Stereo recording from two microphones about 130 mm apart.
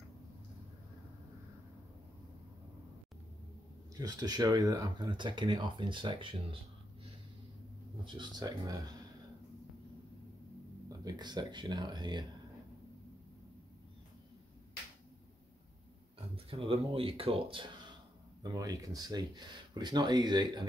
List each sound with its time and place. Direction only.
3.9 s speech: 30° right (ahead or behind)
8.0 s speech: 35° right (ahead or behind)
10.9 s speech: 30° right (ahead or behind)
16.4 s speech: 45° right (ahead or behind)
18.4 s speech: 30° right (ahead or behind)